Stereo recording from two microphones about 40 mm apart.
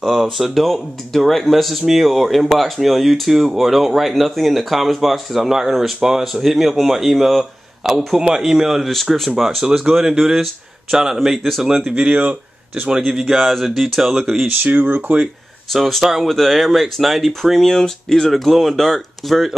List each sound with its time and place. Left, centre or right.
0.0 s speech: centre
8.2 s speech: centre
11.1 s speech: centre
11.8 s speech: right
13.2 s speech: centre
14.6 s speech: right
15.7 s speech: centre